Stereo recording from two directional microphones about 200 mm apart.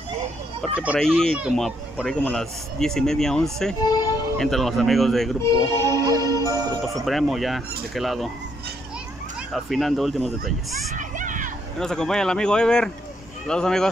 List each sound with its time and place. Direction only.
0.6 s speech: 5° right (ahead or behind)
5.4 s speech: 15° left (ahead or behind)
5.9 s music: 20° right (ahead or behind)
7.1 s speech: centre (ahead or behind)
9.5 s speech: centre (ahead or behind)
11.0 s a sound: 40° right (ahead or behind)
11.8 s speech: 5° left (ahead or behind)